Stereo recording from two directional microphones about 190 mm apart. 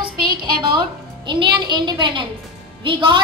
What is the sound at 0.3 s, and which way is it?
Music, 25° right (ahead or behind).